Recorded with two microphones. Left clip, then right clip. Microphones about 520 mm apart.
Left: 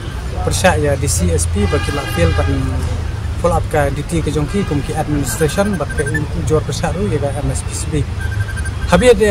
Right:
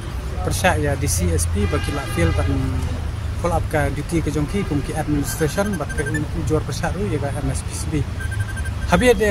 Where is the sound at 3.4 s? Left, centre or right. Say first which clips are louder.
Left 6 dB; right.